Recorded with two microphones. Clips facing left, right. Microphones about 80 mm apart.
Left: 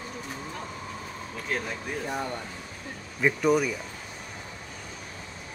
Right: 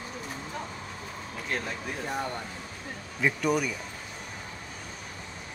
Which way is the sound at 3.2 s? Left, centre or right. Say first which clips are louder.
Left 3 dB; centre.